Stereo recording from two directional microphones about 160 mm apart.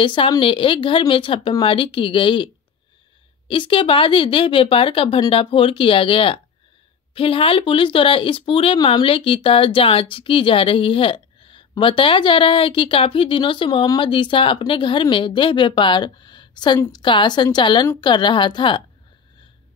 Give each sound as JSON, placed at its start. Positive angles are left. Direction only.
{"t": 0.0, "sound": "a woman's voice", "side_deg": 30}